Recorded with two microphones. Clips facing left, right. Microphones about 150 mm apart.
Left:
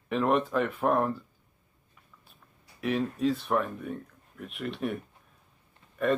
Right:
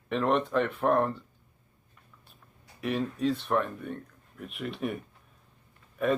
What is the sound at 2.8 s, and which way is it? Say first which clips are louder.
Speech: left 1 dB; centre (ahead or behind).